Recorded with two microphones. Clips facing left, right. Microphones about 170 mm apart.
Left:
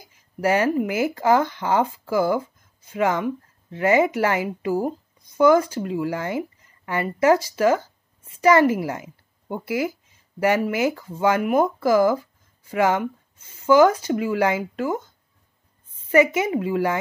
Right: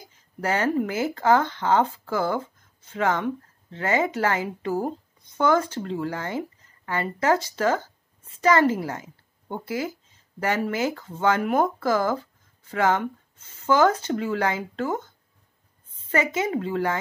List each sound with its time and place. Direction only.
0.4 s a woman's voice: 15° left (ahead or behind)
16.1 s speech: 15° left (ahead or behind)